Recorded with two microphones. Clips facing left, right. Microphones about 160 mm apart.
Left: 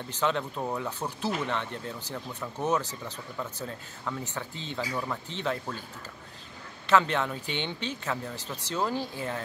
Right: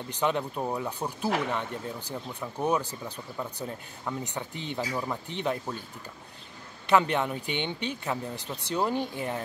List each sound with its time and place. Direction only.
0.1 s speech: 15° right (ahead or behind)
6.9 s speech: 15° right (ahead or behind)